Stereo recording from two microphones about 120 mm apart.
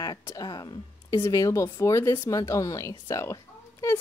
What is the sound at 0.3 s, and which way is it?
Speech, 30° left (ahead or behind).